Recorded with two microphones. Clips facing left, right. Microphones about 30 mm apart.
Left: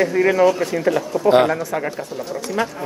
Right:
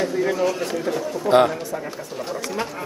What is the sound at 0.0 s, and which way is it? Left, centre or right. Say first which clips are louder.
Speech: left 5 dB; left.